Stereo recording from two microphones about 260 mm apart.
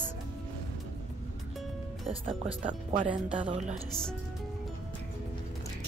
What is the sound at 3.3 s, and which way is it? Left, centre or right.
Speech, centre.